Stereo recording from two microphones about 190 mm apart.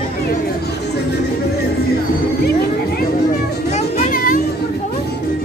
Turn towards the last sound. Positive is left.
turn(degrees=45)  # may be behind; listen again after turning